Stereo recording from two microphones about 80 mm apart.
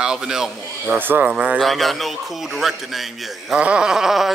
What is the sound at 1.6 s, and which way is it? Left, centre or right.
Speech, centre.